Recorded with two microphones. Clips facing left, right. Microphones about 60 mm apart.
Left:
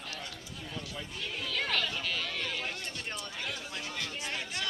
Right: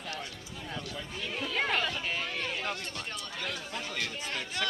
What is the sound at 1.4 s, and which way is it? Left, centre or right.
Music, right.